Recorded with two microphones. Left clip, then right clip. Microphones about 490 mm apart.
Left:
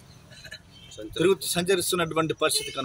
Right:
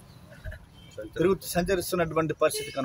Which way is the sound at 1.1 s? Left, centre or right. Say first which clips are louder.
Left 2 dB; right.